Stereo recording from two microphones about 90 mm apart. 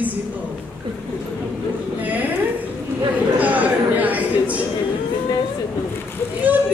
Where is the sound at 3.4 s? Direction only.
20° right (ahead or behind).